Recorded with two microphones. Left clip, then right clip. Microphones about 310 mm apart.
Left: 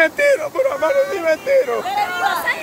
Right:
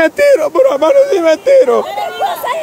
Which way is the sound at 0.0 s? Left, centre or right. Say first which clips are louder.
Right 6 dB; right.